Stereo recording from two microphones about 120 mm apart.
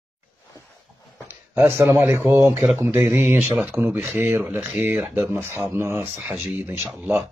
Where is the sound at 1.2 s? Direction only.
15° right (ahead or behind).